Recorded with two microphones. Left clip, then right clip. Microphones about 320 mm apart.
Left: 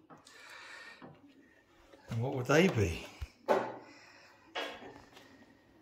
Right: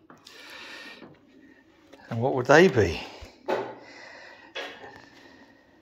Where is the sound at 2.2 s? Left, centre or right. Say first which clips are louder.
Right 11 dB; centre.